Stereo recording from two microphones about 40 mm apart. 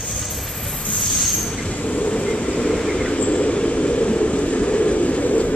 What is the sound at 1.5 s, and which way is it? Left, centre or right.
Train, left.